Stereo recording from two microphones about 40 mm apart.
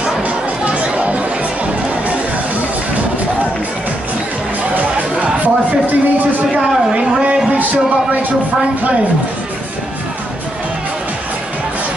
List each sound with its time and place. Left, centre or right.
0.7 s chatter: right
4.7 s music: right
6.5 s a sound: right